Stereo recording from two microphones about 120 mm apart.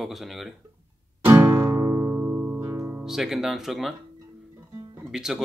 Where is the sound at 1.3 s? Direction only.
15° right (ahead or behind).